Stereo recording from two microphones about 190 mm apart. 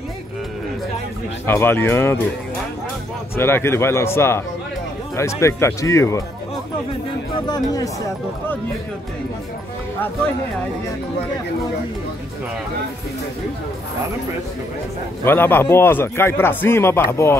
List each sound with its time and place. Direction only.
1.4 s a man's voice: 10° left (ahead or behind)
3.3 s a man's voice: 10° left (ahead or behind)
7.4 s speech: 20° left (ahead or behind)
15.2 s a man's voice: 10° left (ahead or behind)